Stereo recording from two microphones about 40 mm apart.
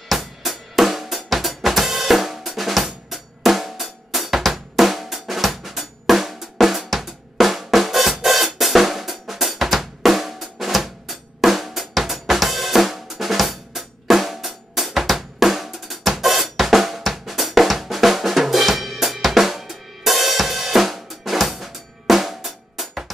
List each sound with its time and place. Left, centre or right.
0.1 s drum kit: centre